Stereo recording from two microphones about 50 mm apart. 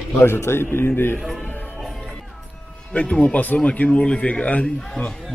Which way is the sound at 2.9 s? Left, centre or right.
Left.